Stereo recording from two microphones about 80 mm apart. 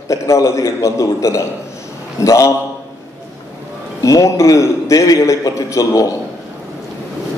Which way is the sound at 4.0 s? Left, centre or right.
Left.